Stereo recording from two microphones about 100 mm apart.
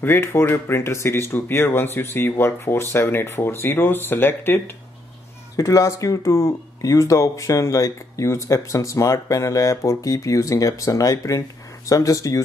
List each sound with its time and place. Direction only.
0.0 s speech: 25° left (ahead or behind)
5.6 s speech: 35° left (ahead or behind)